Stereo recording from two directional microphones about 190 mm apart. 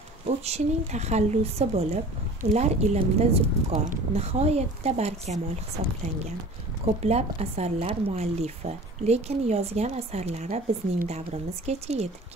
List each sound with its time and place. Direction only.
0.5 s speech: 35° right (ahead or behind)
7.0 s speech: 35° right (ahead or behind)